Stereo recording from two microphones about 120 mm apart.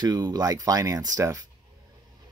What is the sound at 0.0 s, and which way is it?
Speech, 35° right (ahead or behind).